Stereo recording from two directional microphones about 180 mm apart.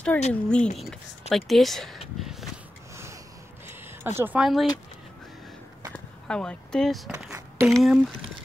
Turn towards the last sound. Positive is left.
turn(degrees=0)  # may be behind; listen again after turning